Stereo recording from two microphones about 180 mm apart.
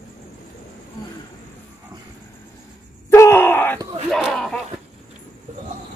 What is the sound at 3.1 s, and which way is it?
Groan, 15° left (ahead or behind).